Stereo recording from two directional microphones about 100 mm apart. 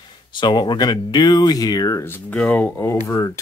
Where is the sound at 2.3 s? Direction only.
10° left (ahead or behind).